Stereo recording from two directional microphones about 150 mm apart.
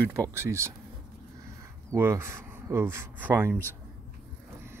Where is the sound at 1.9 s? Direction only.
15° right (ahead or behind).